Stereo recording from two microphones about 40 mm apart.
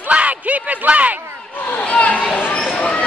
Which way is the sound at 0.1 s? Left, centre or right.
Right.